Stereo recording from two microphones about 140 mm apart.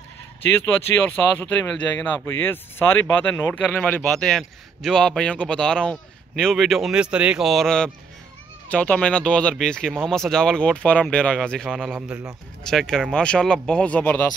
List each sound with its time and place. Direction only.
1.0 s speech: 15° left (ahead or behind)
4.3 s a man's voice: centre (ahead or behind)
11.9 s a man's voice: 10° right (ahead or behind)
12.6 s a man's voice: 5° left (ahead or behind)